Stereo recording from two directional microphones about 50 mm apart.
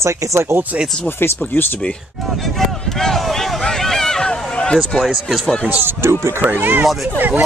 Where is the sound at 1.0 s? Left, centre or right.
Left.